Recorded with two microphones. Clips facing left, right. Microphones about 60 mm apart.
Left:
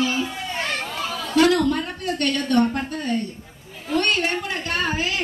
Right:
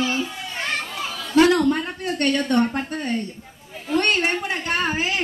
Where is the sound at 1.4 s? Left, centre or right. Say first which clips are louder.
Right 2 dB; right.